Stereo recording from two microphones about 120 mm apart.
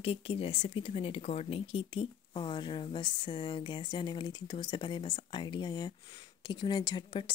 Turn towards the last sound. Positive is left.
turn(degrees=40)  # may be behind; listen again after turning